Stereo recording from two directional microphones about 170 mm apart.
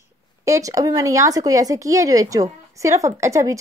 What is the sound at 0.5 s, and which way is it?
A child's voice, 20° right (ahead or behind).